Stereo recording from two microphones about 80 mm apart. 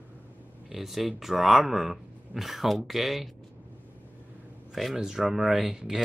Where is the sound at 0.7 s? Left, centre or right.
Centre.